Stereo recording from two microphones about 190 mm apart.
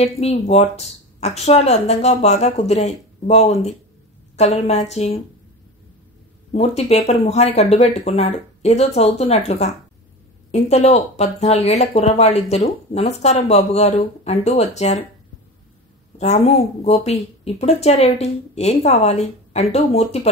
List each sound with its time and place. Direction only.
0.0 s speech: 35° left (ahead or behind)
6.5 s speech: 35° left (ahead or behind)
16.2 s speech: 35° left (ahead or behind)